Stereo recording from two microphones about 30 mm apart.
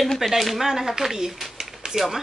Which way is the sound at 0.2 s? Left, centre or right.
Centre.